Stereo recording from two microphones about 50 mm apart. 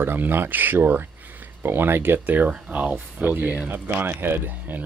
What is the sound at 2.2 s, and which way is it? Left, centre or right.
Speech, right.